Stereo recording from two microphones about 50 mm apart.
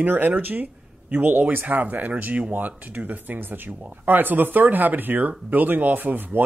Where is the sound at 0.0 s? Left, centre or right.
Right.